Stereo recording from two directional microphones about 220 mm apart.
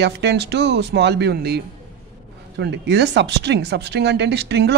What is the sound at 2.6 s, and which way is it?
A man's voice, 50° right (ahead or behind).